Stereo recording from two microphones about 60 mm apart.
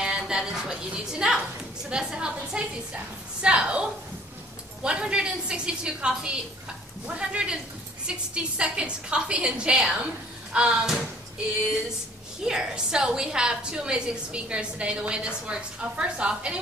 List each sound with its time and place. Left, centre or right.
0.0 s a woman's voice: centre
4.8 s a woman's voice: centre
8.5 s a woman's voice: centre
12.4 s a woman's voice: centre